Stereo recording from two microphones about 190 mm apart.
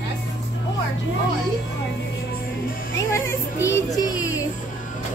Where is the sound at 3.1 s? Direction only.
15° left (ahead or behind).